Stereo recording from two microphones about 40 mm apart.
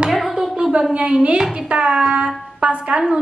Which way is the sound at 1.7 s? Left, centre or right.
Right.